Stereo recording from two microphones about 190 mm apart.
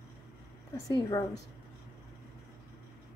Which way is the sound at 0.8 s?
20° left (ahead or behind).